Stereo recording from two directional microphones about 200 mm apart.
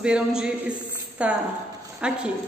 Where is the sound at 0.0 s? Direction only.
5° right (ahead or behind).